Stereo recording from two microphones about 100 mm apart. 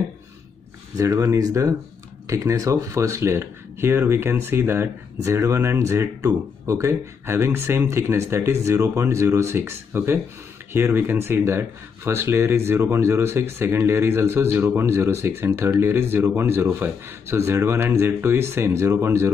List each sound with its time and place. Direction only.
0.9 s speech: 30° right (ahead or behind)